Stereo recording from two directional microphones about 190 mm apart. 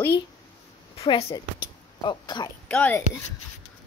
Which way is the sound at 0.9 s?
20° left (ahead or behind).